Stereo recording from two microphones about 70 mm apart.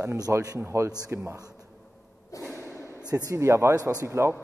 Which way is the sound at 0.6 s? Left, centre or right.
Right.